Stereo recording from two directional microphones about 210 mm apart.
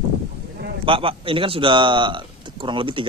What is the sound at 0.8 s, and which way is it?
Speech, 25° right (ahead or behind).